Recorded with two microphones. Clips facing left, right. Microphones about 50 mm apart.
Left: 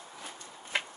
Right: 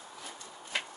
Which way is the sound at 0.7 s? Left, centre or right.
Left.